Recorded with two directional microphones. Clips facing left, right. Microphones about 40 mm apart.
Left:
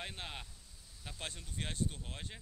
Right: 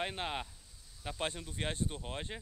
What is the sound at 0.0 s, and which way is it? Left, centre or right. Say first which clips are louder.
Speech: right 8 dB; right.